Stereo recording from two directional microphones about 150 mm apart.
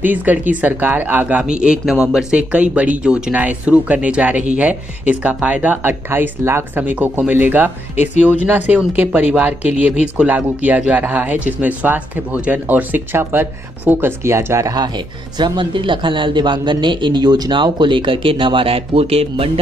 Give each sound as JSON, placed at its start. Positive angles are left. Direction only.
{"t": 0.0, "sound": "speech", "side_deg": -10}
{"t": 7.9, "sound": "speech", "side_deg": 50}
{"t": 8.2, "sound": "speech", "side_deg": -10}